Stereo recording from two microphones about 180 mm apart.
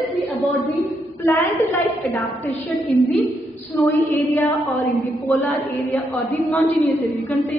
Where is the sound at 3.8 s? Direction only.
15° left (ahead or behind).